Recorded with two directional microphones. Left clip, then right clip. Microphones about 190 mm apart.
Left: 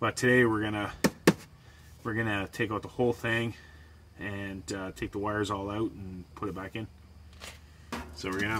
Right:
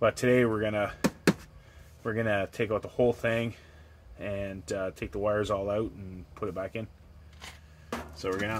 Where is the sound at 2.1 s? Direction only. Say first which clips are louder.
Right 3 dB; 20° right (ahead or behind).